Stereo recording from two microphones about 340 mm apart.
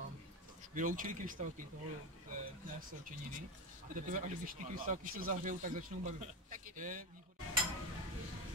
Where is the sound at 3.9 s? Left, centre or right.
Right.